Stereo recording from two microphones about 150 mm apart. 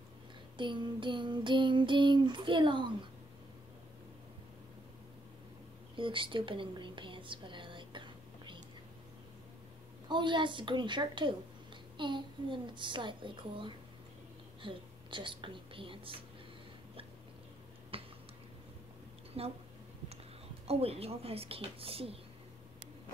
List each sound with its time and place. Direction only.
0.6 s child singing: 35° right (ahead or behind)
5.9 s whispering: 35° right (ahead or behind)
10.0 s child singing: 30° right (ahead or behind)
17.9 s a sound: 40° right (ahead or behind)
19.4 s child singing: 40° right (ahead or behind)
20.6 s child singing: 40° right (ahead or behind)